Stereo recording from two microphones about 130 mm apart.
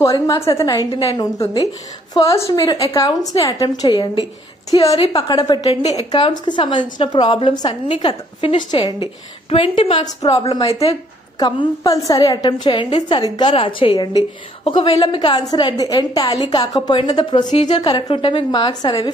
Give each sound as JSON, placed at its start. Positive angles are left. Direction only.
{"t": 0.0, "sound": "a woman's voice", "side_deg": 25}
{"t": 5.7, "sound": "a woman's voice", "side_deg": 50}
{"t": 6.1, "sound": "a woman's voice", "side_deg": 40}
{"t": 11.3, "sound": "a woman's voice", "side_deg": 30}
{"t": 14.6, "sound": "a woman's voice", "side_deg": 45}